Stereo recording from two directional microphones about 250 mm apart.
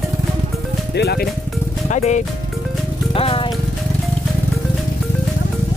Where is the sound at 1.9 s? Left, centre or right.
Left.